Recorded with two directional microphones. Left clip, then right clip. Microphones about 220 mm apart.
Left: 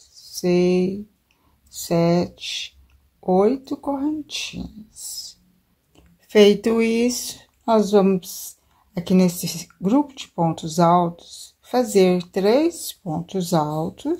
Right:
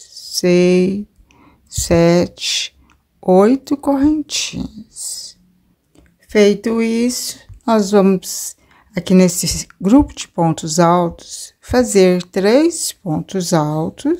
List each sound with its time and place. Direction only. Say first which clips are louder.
0.0 s speech: right 8 dB; 30° right (ahead or behind)